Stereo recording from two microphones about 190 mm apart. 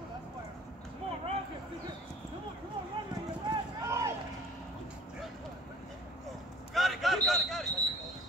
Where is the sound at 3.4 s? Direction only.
15° right (ahead or behind).